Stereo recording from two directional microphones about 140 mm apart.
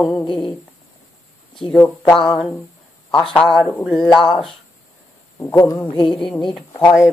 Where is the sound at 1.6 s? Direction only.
10° left (ahead or behind).